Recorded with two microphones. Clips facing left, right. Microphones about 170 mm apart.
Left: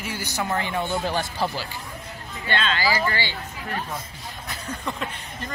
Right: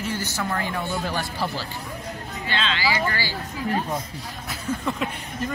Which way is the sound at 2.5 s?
45° left (ahead or behind).